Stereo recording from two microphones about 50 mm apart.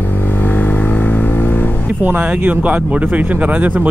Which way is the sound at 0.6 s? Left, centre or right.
Left.